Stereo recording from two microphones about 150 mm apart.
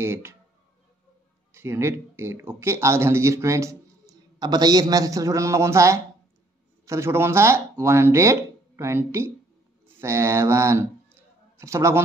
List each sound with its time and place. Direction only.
0.0 s speech: 15° right (ahead or behind)
1.5 s a man's voice: 15° right (ahead or behind)